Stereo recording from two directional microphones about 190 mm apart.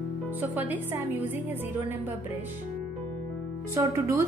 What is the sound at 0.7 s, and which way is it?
Speech, 10° right (ahead or behind).